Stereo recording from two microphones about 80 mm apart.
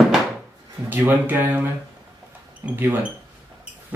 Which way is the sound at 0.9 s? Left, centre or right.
Right.